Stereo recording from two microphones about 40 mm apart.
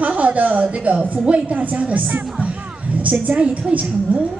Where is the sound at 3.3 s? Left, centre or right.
Right.